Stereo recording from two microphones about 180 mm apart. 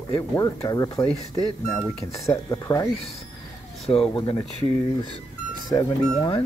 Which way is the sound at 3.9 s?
30° left (ahead or behind).